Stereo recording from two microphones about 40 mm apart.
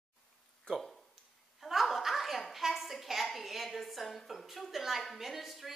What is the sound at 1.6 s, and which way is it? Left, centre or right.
Chuckle, centre.